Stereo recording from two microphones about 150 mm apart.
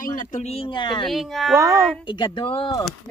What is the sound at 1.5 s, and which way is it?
Speech, 20° right (ahead or behind).